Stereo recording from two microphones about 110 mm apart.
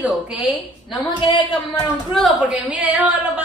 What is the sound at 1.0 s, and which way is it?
Speech, 45° left (ahead or behind).